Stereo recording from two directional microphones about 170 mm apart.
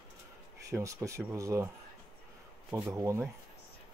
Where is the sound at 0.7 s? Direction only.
15° right (ahead or behind).